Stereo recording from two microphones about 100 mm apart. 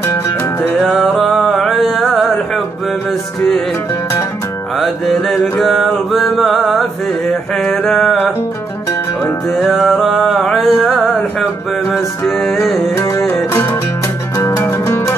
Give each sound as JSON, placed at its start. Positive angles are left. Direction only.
{"t": 0.0, "sound": "music", "side_deg": 25}
{"t": 0.7, "sound": "music", "side_deg": -5}
{"t": 5.3, "sound": "mantra", "side_deg": 0}
{"t": 7.6, "sound": "a sound", "side_deg": 0}
{"t": 9.6, "sound": "music", "side_deg": -5}
{"t": 12.9, "sound": "music", "side_deg": 25}